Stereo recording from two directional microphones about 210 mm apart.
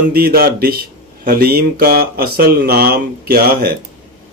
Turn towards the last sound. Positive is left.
turn(degrees=-45)  # may be behind; listen again after turning